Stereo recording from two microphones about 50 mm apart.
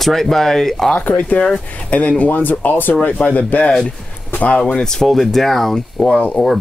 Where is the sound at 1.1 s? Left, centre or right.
Left.